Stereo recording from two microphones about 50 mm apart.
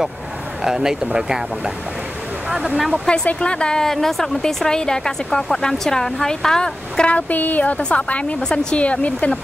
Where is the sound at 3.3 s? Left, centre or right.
Left.